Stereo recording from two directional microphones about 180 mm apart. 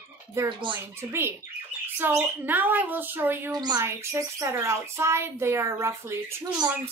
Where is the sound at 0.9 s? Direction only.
15° right (ahead or behind).